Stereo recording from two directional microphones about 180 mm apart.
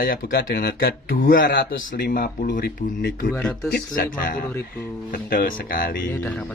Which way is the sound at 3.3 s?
5° left (ahead or behind).